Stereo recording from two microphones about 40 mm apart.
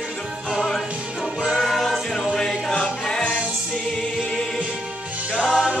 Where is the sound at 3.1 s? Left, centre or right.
Left.